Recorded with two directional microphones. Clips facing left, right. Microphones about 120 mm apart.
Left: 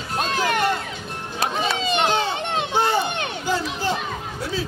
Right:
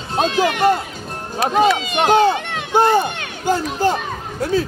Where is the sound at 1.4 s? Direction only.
50° right (ahead or behind).